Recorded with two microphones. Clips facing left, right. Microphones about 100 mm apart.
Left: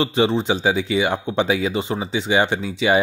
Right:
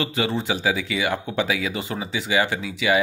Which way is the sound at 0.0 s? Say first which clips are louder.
Left 6 dB; 25° left (ahead or behind).